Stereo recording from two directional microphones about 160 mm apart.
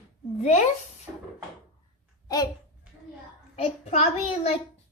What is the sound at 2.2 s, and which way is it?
Babbling, 25° left (ahead or behind).